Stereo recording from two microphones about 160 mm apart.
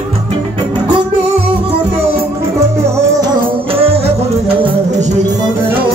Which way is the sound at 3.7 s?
40° right (ahead or behind).